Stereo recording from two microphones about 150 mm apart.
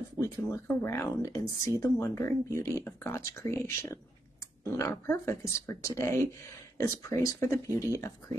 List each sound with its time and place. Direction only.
0.2 s speech: 20° left (ahead or behind)